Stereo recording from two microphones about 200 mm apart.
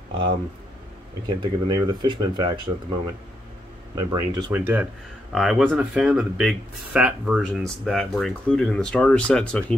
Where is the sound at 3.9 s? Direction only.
20° right (ahead or behind).